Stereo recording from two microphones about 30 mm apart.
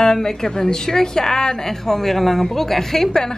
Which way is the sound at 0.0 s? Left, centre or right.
Centre.